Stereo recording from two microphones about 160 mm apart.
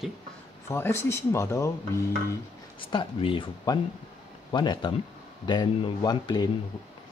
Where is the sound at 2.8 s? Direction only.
30° left (ahead or behind).